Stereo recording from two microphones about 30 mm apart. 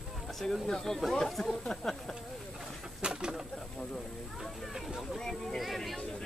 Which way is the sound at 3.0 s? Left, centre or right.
Right.